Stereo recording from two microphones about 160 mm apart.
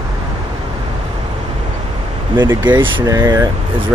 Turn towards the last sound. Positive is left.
turn(degrees=-20)  # may be behind; listen again after turning